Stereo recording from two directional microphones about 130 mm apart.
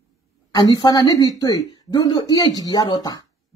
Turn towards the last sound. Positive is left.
turn(degrees=30)  # may be behind; listen again after turning